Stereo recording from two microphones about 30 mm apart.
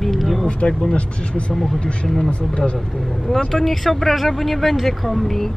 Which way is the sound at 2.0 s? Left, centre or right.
Centre.